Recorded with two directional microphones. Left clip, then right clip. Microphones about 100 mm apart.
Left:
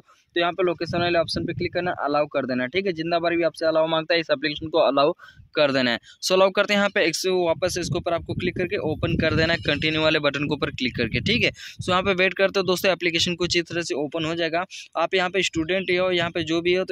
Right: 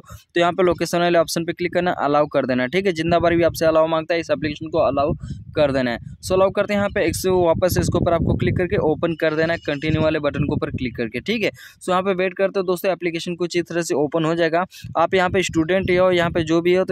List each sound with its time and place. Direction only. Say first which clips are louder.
0.3 s speech: right 5 dB; 50° right (ahead or behind)
3.8 s speech: right 2 dB; 20° right (ahead or behind)
5.6 s speech: right 1 dB; 25° right (ahead or behind)
7.1 s speech: right 4 dB; 45° right (ahead or behind)
9.2 s speech: left 2 dB; 30° right (ahead or behind)
11.2 s speech: even; 35° right (ahead or behind); by 13.5 s 15° right (ahead or behind)
13.7 s speech: right 6 dB; 60° right (ahead or behind)